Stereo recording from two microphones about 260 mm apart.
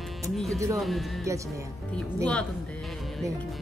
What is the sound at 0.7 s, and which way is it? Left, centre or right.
Speech, centre.